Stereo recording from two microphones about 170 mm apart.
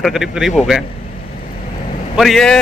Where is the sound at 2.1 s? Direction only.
Centre (ahead or behind).